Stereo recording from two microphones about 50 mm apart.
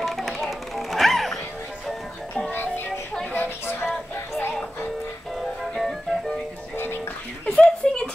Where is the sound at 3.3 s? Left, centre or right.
Left.